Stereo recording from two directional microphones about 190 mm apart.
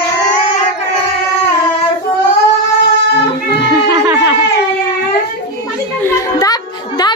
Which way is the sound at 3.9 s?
15° right (ahead or behind).